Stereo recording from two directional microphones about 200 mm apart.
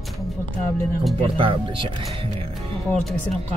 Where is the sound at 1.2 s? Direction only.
25° right (ahead or behind).